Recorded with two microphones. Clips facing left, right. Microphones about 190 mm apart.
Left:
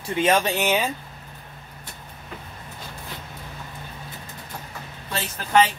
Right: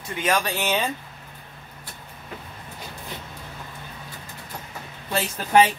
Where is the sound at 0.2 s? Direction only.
25° left (ahead or behind).